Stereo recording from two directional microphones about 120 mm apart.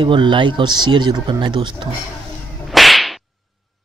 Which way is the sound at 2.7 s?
Centre (ahead or behind).